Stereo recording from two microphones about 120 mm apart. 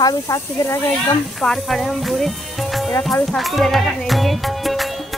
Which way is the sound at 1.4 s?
5° left (ahead or behind).